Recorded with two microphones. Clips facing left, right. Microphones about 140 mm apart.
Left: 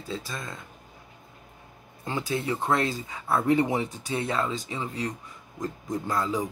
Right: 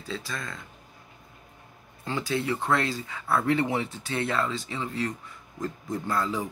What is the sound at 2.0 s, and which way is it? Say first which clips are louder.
Speech: even; 20° left (ahead or behind).